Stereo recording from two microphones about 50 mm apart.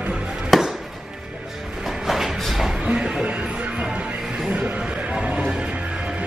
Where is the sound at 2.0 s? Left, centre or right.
Centre.